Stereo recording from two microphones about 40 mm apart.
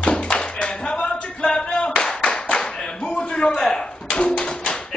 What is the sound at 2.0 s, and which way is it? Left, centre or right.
Clapping, left.